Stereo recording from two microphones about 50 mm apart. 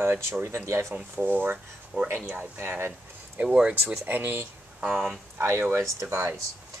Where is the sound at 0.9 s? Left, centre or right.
Right.